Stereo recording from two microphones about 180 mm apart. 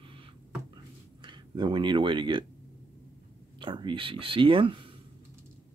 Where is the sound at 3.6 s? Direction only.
25° right (ahead or behind).